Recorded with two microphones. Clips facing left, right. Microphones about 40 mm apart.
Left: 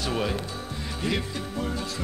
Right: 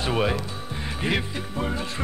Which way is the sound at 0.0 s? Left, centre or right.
Right.